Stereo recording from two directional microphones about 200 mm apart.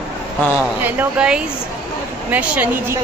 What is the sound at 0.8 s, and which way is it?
Speech, 10° right (ahead or behind).